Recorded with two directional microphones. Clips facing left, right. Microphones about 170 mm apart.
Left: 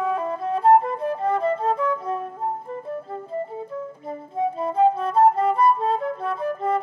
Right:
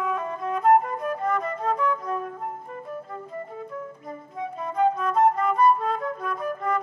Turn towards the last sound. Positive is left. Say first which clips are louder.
# left 3 dB
turn(degrees=30)  # may be behind; listen again after turning